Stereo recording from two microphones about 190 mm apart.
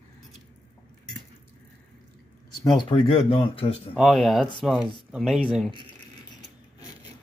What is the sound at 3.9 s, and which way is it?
Speech, centre (ahead or behind).